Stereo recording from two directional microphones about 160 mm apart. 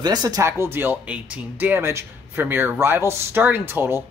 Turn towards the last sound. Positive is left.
turn(degrees=-15)  # may be behind; listen again after turning